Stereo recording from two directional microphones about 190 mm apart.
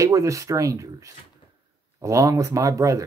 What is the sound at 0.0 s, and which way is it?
Speech, 15° right (ahead or behind).